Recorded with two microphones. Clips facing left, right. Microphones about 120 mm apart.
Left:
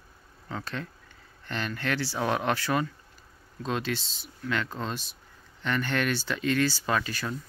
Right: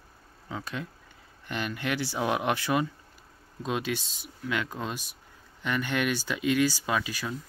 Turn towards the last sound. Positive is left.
turn(degrees=-10)  # may be behind; listen again after turning